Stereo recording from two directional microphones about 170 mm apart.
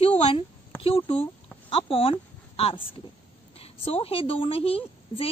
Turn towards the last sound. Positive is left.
turn(degrees=35)  # may be behind; listen again after turning